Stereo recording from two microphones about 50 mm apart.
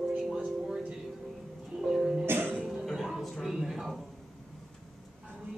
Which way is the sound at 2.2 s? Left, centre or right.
Right.